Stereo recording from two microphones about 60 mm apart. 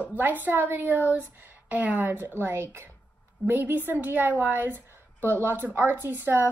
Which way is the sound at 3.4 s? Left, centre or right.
Right.